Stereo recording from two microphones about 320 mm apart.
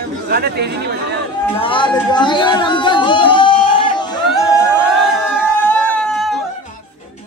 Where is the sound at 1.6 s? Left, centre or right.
Centre.